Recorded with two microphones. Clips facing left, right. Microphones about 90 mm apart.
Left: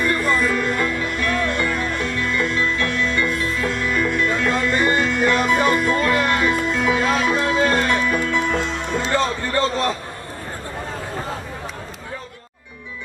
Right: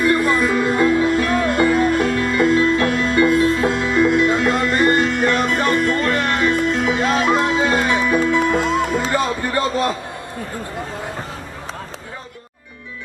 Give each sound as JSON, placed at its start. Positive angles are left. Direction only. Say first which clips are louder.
{"t": 0.0, "sound": "music", "louder": "right 3 dB", "side_deg": -5}
{"t": 1.8, "sound": "music", "louder": "right 7 dB", "side_deg": -40}